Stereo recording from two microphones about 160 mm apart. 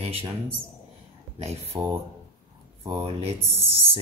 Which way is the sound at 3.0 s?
40° right (ahead or behind).